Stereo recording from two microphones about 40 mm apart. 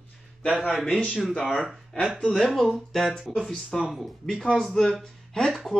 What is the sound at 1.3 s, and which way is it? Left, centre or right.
Speech, left.